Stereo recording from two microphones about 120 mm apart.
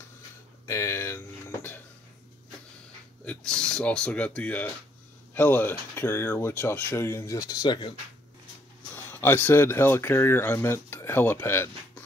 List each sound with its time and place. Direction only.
0.7 s a sound: 25° left (ahead or behind)
3.3 s speech: 5° left (ahead or behind); by 7.9 s 35° left (ahead or behind)
8.9 s speech: 20° left (ahead or behind)